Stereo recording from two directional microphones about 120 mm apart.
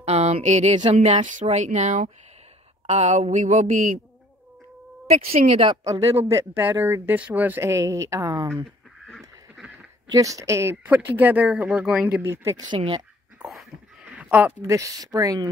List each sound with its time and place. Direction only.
0.0 s speech: 60° right (ahead or behind); by 2.0 s 80° right
2.9 s a sound: 75° right (ahead or behind)
5.1 s speech: 60° right (ahead or behind)
5.9 s speech: 25° right (ahead or behind)
10.0 s speech: 30° right (ahead or behind)
12.7 s speech: 45° right (ahead or behind)
14.0 s a sound: 10° right (ahead or behind)
14.6 s speech: 25° right (ahead or behind)